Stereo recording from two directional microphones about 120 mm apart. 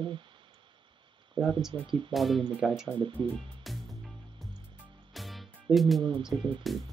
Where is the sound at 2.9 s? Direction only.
40° right (ahead or behind).